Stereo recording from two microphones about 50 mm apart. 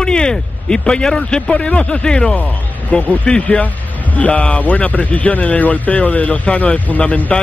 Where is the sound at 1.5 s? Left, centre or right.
Left.